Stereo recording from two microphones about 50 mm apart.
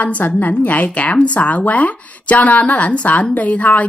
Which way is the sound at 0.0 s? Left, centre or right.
Left.